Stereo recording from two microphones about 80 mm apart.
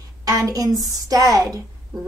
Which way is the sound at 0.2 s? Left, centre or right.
Right.